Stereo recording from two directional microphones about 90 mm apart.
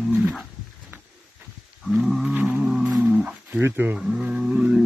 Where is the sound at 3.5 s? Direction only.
20° right (ahead or behind).